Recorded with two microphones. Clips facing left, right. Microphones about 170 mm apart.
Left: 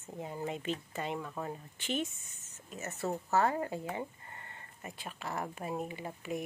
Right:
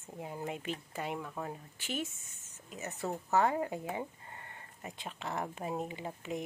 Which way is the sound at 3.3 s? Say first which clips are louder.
Right 1 dB; 15° right (ahead or behind).